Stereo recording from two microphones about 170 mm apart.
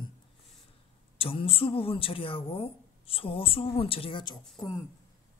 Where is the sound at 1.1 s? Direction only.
35° left (ahead or behind).